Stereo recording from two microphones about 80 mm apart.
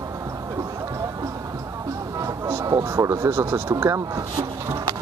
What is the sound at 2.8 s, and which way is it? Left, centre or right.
Speech, right.